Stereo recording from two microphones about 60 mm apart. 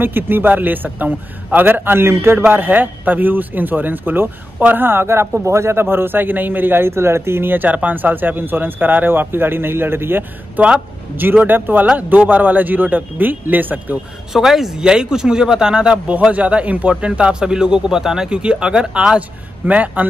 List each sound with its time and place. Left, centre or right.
0.0 s speech: right
6.9 s a man's voice: right
14.3 s a man's voice: centre; by 20.1 s right